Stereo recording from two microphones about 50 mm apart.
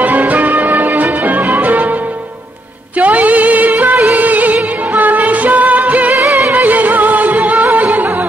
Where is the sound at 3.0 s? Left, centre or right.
Right.